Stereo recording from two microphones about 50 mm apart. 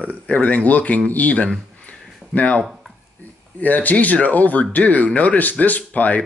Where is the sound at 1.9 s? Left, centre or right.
Left.